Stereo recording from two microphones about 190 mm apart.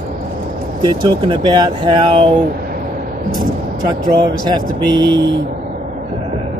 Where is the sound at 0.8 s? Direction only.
25° right (ahead or behind).